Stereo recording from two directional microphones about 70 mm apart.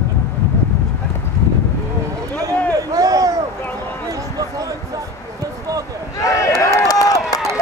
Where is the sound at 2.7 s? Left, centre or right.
Right.